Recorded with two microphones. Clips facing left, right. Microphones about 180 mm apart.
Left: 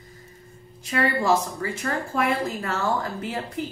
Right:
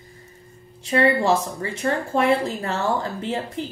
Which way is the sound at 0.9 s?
25° right (ahead or behind).